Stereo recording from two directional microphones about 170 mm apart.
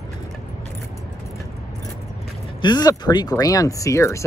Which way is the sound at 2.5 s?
25° left (ahead or behind).